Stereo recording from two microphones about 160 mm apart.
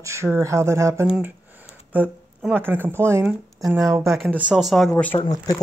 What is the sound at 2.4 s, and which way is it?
Speech, 10° right (ahead or behind).